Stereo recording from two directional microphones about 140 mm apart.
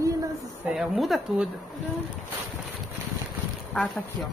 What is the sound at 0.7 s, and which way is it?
Speech, centre (ahead or behind).